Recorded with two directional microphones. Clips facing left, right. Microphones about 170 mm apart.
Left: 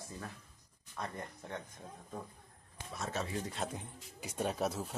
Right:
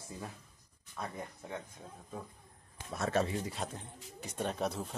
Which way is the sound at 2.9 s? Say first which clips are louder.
Right 7 dB; 55° right (ahead or behind).